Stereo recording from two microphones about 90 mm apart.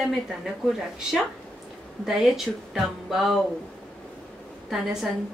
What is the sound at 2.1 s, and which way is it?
A woman's voice, 5° right (ahead or behind).